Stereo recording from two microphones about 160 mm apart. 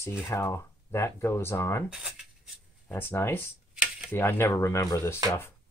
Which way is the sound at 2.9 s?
15° left (ahead or behind).